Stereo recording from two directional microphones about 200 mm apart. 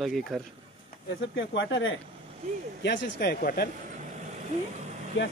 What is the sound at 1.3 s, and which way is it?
Speech, 65° left (ahead or behind).